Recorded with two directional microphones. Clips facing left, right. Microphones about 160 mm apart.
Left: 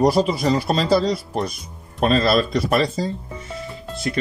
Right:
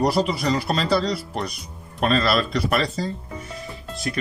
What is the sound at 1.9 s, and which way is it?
Speech, 35° left (ahead or behind).